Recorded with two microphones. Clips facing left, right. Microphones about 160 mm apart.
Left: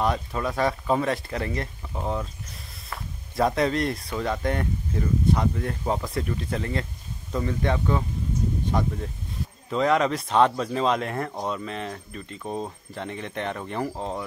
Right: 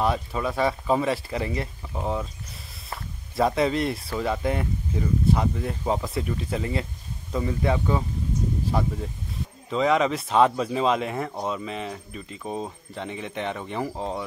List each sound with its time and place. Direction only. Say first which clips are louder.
0.0 s speech: right 1 dB; 5° right (ahead or behind)
3.3 s speech: right 1 dB; centre (ahead or behind)